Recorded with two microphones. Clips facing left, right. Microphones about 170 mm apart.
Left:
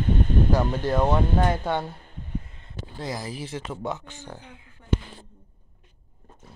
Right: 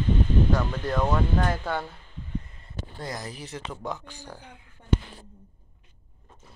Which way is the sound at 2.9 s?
5° left (ahead or behind).